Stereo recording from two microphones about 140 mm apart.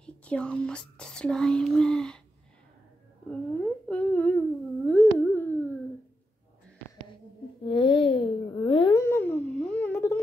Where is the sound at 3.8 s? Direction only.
10° left (ahead or behind).